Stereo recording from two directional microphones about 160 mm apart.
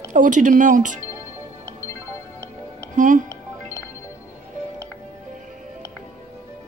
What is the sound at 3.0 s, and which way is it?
Speech, 55° right (ahead or behind).